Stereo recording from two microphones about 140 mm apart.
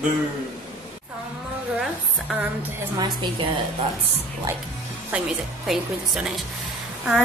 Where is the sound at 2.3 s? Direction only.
10° right (ahead or behind).